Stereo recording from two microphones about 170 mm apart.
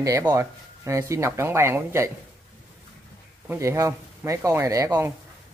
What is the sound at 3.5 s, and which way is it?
Speech, 15° right (ahead or behind).